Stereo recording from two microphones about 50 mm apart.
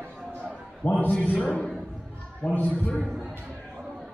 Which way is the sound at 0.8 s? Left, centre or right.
Left.